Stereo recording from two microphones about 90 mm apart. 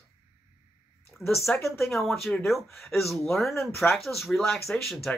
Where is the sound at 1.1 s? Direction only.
15° left (ahead or behind).